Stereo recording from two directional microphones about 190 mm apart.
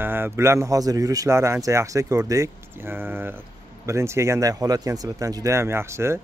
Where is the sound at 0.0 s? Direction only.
10° right (ahead or behind).